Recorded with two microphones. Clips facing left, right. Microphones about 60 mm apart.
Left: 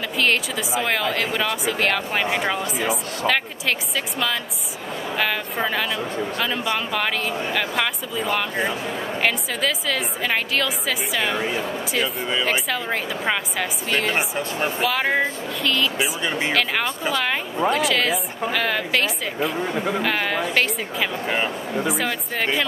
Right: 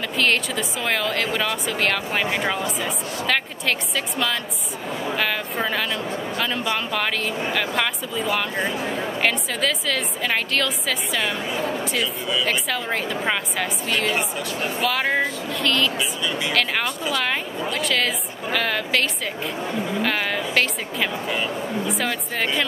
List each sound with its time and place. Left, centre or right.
0.2 s a woman's voice: centre
12.4 s a woman's voice: centre
13.8 s a woman's voice: centre
16.2 s a woman's voice: left
17.6 s a woman's voice: centre